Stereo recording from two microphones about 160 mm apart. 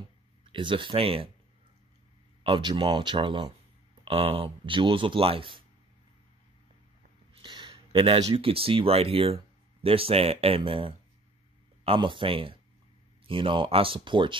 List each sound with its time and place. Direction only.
0.5 s speech: 30° right (ahead or behind)
2.4 s speech: 30° right (ahead or behind)
7.4 s a sound: 30° right (ahead or behind)
8.4 s speech: 35° right (ahead or behind)